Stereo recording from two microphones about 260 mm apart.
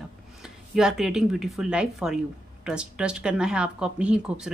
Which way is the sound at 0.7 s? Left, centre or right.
Centre.